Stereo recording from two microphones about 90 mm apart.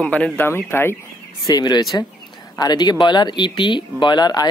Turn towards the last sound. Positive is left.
turn(degrees=50)  # may be behind; listen again after turning